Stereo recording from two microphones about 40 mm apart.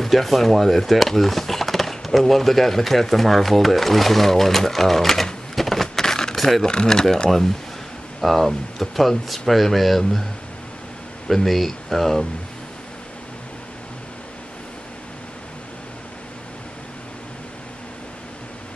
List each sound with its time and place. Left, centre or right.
0.0 s speech: centre
6.3 s a sound: centre
6.6 s speech: centre
11.2 s speech: centre